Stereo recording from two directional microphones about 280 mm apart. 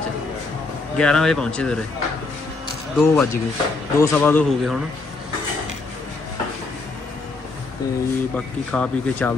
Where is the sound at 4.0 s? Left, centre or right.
Centre.